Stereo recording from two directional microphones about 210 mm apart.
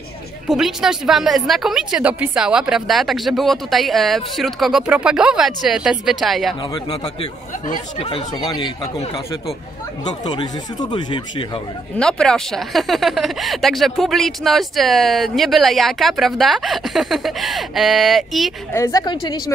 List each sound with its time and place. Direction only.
0.5 s speech: centre (ahead or behind)
6.7 s speech: 30° left (ahead or behind)
10.0 s speech: 20° left (ahead or behind)
12.0 s speech: 5° left (ahead or behind)
18.7 s a woman's voice: 15° left (ahead or behind)